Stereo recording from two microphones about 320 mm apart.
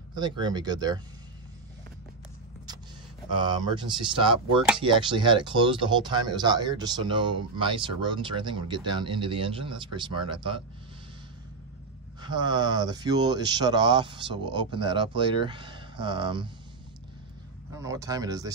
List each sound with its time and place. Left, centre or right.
0.1 s speech: centre
3.3 s speech: centre
12.2 s speech: centre
17.7 s speech: centre